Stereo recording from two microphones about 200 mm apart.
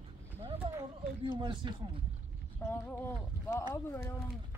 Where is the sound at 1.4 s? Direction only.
20° right (ahead or behind).